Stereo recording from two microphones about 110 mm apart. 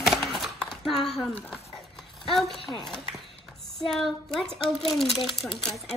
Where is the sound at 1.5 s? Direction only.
Centre (ahead or behind).